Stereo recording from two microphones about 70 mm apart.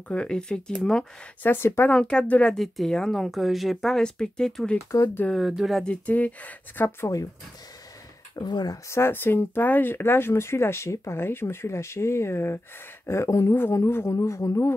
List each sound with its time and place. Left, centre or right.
0.1 s speech: centre
1.4 s speech: left
1.9 s speech: centre
2.5 s speech: centre
5.9 s speech: left
8.4 s speech: left
8.8 s speech: left
14.0 s speech: left